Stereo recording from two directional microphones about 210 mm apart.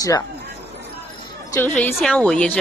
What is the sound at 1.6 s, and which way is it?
Speech, 5° left (ahead or behind).